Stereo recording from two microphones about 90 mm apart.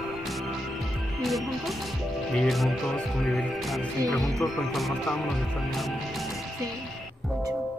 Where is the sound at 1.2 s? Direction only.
Centre (ahead or behind).